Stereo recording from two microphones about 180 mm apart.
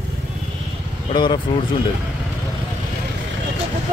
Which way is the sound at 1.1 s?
25° left (ahead or behind).